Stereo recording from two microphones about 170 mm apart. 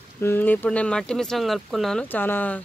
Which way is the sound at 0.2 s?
10° left (ahead or behind).